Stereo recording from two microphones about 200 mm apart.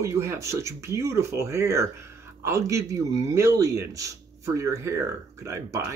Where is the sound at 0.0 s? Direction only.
15° right (ahead or behind).